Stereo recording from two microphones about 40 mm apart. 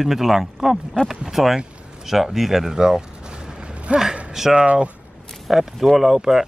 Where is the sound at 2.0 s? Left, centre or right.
Centre; by 4.0 s right.